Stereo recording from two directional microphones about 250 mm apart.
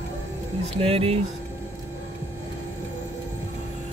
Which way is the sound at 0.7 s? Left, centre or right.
Right.